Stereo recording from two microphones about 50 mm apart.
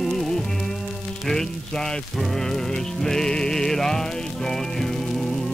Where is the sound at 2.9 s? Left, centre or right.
Centre.